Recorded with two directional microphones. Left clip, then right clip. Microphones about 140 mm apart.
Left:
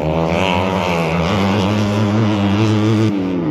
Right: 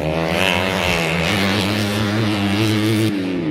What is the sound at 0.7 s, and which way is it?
Vehicle, 25° left (ahead or behind).